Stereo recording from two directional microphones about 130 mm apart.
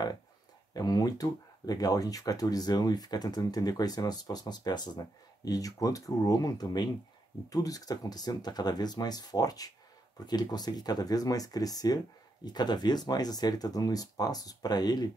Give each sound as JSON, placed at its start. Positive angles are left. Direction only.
{"t": 0.7, "sound": "speech", "side_deg": 30}